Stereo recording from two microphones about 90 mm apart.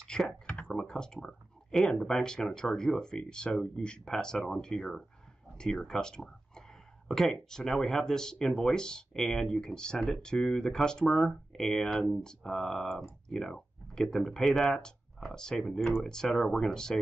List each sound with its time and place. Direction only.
0.0 s speech: 5° left (ahead or behind)